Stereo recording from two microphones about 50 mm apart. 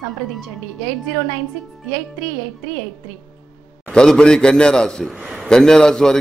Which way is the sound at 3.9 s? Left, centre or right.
Centre.